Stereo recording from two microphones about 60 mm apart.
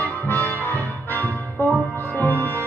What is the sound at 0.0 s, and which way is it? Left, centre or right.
Music, left.